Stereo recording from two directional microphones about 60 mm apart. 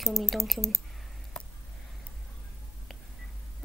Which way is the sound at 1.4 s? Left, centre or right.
Centre.